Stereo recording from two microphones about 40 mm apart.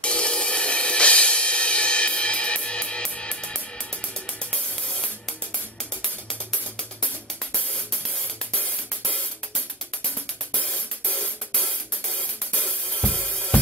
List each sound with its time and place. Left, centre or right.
0.0 s music: left
6.0 s music: centre
10.5 s music: left